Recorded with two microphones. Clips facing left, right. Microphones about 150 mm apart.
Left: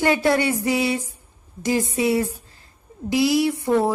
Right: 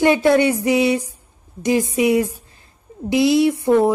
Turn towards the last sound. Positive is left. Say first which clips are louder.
# right 5 dB
turn(degrees=-20)  # may be behind; listen again after turning